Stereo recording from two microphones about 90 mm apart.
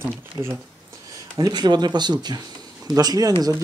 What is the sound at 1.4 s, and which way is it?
Speech, 55° right (ahead or behind).